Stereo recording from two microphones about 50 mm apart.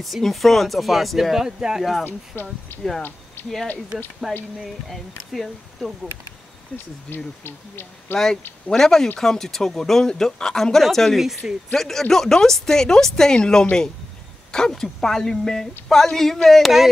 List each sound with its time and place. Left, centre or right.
0.0 s speech: centre
2.3 s speech: left
3.4 s a sound: left
3.9 s speech: centre
7.4 s speech: left
8.6 s speech: centre
11.1 s speech: centre
11.7 s speech: centre